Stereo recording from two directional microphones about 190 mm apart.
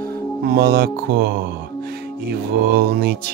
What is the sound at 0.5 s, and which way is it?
Music, 55° right (ahead or behind).